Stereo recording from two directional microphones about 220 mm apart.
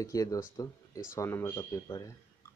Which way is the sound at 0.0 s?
15° left (ahead or behind).